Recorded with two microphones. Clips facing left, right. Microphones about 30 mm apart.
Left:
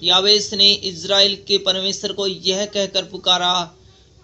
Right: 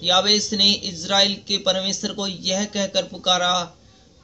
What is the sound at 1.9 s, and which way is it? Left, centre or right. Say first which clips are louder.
Speech: left 4 dB; left.